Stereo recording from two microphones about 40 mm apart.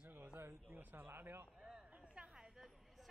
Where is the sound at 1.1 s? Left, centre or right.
Right.